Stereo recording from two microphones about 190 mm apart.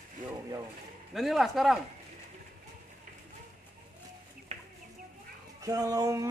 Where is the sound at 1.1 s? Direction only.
Centre (ahead or behind).